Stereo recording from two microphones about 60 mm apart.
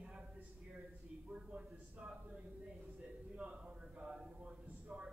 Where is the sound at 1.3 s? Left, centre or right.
Centre.